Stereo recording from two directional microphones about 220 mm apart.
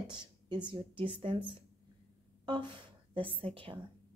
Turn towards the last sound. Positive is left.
turn(degrees=-25)  # may be behind; listen again after turning